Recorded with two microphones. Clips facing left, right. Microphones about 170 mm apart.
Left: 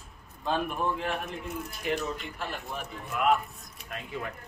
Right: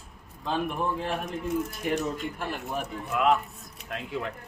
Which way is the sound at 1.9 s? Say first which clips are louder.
Right 1 dB; 50° right (ahead or behind).